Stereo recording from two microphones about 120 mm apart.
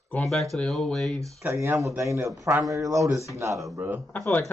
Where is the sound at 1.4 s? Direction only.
20° right (ahead or behind).